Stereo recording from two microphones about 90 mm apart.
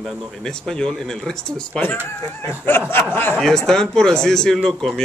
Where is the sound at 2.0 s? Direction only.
25° left (ahead or behind).